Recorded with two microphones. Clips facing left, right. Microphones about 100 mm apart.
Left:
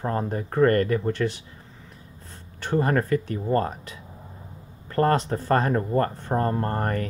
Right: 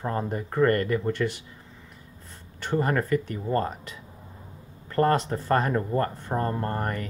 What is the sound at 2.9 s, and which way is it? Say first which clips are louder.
Speech: left 1 dB; 35° left (ahead or behind).